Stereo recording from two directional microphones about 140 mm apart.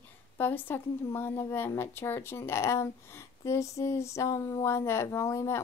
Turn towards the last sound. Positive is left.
turn(degrees=20)  # may be behind; listen again after turning